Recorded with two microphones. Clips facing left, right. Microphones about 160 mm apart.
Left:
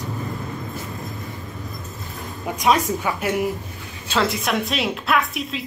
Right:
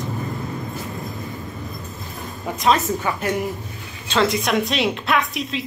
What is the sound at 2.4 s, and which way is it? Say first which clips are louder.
A woman's voice: even; 10° left (ahead or behind).